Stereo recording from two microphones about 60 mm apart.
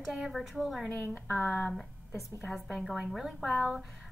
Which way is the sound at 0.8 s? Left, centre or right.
Left.